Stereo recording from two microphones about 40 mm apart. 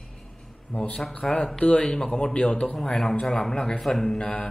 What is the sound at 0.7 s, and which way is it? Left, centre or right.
Speech, left.